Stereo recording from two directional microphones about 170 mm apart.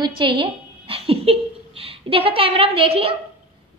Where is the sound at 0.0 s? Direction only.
30° right (ahead or behind).